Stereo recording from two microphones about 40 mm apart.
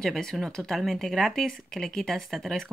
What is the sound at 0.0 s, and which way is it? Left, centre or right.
Speech, centre.